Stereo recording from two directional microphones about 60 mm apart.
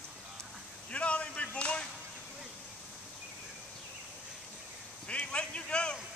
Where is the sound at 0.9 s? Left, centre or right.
Left.